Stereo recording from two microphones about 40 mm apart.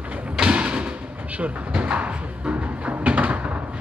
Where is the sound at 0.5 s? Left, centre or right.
Right.